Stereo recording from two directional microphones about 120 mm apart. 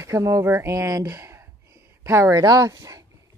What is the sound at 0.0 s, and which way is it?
Speech, 25° right (ahead or behind).